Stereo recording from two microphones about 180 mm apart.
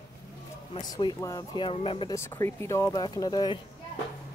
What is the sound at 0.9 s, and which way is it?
Speech, 20° left (ahead or behind).